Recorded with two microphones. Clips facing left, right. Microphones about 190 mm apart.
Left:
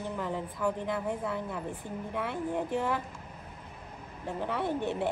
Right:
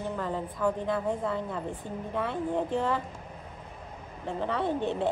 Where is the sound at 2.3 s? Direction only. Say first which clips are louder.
Right 2 dB; 20° right (ahead or behind).